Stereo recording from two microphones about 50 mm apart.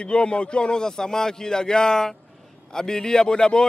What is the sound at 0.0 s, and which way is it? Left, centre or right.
Speech, centre.